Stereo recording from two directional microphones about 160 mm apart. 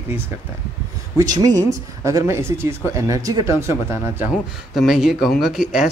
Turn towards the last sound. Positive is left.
turn(degrees=0)  # may be behind; listen again after turning